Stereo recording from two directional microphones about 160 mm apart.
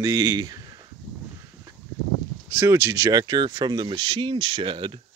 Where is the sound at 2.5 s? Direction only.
15° right (ahead or behind).